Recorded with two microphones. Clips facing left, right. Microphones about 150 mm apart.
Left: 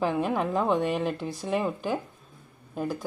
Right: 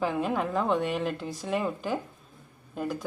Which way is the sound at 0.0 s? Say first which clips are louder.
Left 2 dB; 10° left (ahead or behind).